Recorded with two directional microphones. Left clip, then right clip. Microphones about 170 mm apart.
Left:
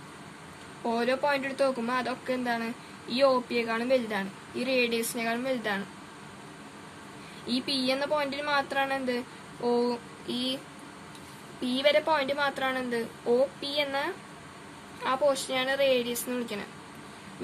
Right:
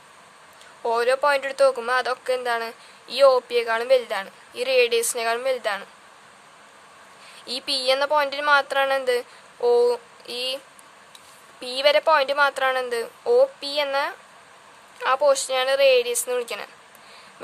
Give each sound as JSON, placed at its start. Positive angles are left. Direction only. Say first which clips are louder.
{"t": 0.8, "sound": "speech", "louder": "right 7 dB", "side_deg": -65}
{"t": 7.4, "sound": "speech", "louder": "right 6 dB", "side_deg": -65}
{"t": 11.6, "sound": "speech", "louder": "right 6 dB", "side_deg": -55}